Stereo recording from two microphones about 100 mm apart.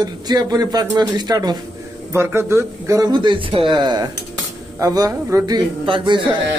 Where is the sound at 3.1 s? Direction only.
50° right (ahead or behind).